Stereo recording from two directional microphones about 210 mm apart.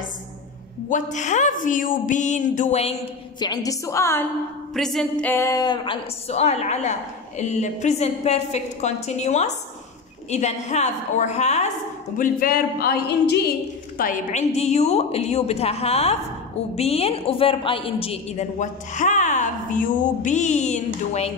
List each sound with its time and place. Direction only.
0.8 s a woman's voice: 35° left (ahead or behind)
3.4 s a woman's voice: 15° left (ahead or behind)
4.7 s a woman's voice: centre (ahead or behind); by 11.7 s 30° left (ahead or behind)
12.2 s a sound: 45° left (ahead or behind)
13.9 s a woman's voice: 40° left (ahead or behind)